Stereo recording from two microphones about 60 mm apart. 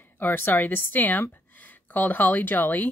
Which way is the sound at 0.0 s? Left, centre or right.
Left.